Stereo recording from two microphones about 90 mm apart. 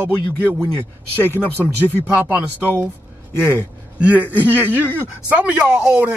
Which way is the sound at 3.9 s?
15° right (ahead or behind).